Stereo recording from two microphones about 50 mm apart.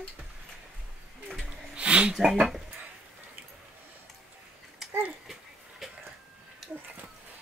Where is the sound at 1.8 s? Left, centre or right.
Right.